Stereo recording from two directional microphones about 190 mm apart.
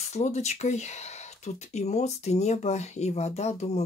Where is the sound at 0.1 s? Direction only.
35° left (ahead or behind).